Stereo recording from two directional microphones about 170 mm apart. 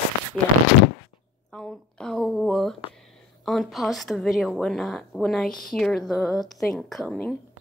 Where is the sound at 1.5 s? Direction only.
5° left (ahead or behind).